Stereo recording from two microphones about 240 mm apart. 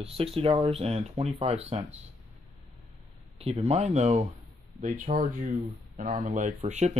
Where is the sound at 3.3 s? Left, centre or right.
Right.